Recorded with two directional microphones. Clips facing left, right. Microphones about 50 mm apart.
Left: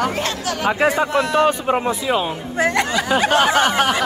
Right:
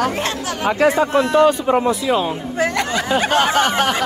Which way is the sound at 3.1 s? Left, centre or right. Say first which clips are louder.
Left 1 dB; centre.